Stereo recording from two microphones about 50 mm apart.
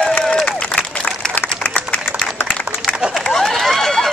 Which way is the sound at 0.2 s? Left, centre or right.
Centre.